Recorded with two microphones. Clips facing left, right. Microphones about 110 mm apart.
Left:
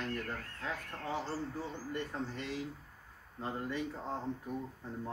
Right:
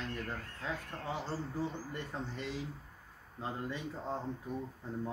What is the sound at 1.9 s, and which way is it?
Speech, 15° right (ahead or behind).